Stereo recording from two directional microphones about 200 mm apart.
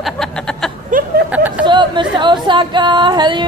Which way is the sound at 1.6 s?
25° right (ahead or behind).